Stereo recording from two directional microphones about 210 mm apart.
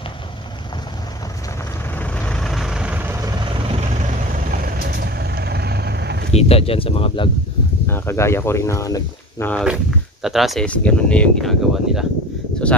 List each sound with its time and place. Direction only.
2.0 s vehicle: 5° left (ahead or behind)
4.5 s vehicle: 45° right (ahead or behind)
6.3 s speech: 30° left (ahead or behind)
7.9 s speech: 10° left (ahead or behind)